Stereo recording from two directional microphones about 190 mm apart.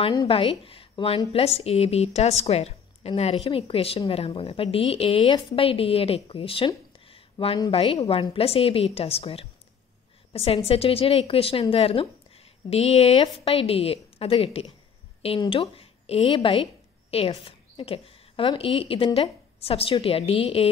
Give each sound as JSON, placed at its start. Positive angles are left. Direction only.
{"t": 0.0, "sound": "a woman's voice", "side_deg": 25}